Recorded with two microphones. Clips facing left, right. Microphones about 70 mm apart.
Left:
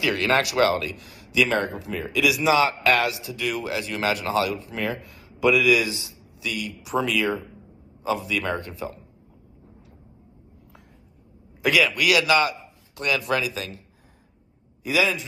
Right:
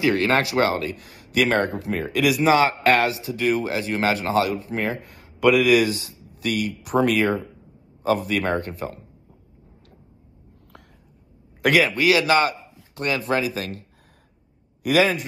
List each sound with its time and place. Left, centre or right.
0.0 s speech: right
5.0 s speech: right
11.8 s a man's voice: right
14.8 s a man's voice: right